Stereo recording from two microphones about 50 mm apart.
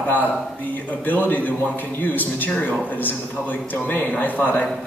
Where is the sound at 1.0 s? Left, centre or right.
Left.